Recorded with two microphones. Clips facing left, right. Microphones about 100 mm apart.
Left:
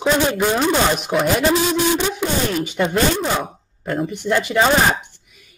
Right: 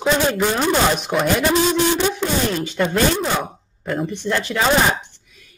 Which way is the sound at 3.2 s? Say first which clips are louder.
Even; centre (ahead or behind).